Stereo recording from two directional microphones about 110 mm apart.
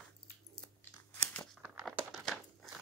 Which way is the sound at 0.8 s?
15° left (ahead or behind).